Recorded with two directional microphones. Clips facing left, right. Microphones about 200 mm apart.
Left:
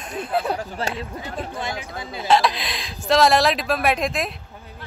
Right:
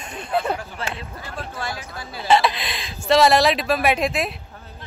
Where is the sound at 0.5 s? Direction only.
40° left (ahead or behind).